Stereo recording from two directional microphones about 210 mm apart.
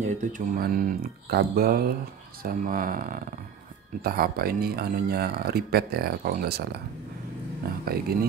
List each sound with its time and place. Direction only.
0.0 s speech: 40° right (ahead or behind)
7.8 s speech: 45° right (ahead or behind)